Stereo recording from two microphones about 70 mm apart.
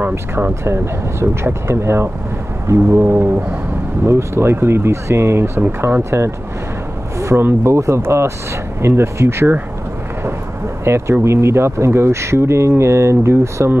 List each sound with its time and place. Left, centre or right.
0.1 s speech: right
10.8 s speech: right